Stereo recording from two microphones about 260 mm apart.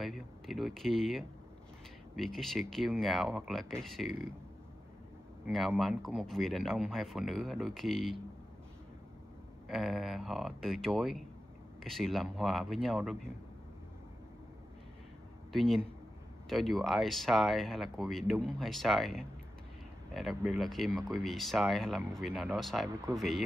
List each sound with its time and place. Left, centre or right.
0.0 s speech: centre
5.5 s speech: centre
9.7 s speech: centre
15.5 s speech: centre